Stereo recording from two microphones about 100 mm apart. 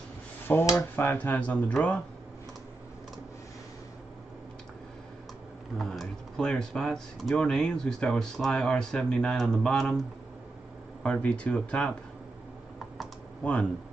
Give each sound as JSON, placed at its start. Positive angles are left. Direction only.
{"t": 0.5, "sound": "speech", "side_deg": 20}
{"t": 5.8, "sound": "speech", "side_deg": 5}
{"t": 12.7, "sound": "computer keyboard", "side_deg": 0}
{"t": 13.4, "sound": "speech", "side_deg": 10}